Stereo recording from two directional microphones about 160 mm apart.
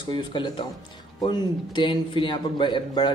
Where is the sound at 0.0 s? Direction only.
30° left (ahead or behind).